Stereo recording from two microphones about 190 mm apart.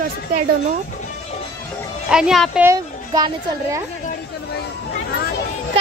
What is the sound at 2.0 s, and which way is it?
Speech, 5° right (ahead or behind).